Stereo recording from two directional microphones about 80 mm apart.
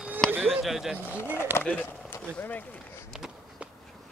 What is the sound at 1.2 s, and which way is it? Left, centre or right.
Speech, left.